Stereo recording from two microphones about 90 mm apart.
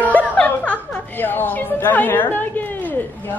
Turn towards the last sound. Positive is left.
turn(degrees=20)  # may be behind; listen again after turning